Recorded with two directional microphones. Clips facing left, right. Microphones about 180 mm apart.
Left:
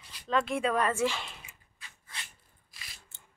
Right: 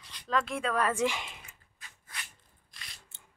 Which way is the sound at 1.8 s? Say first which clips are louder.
Even; 45° right (ahead or behind).